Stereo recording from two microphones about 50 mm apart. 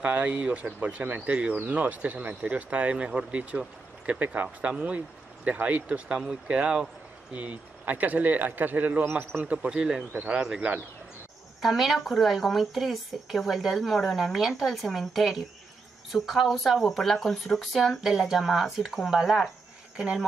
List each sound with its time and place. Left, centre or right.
0.0 s speech: right
11.6 s speech: centre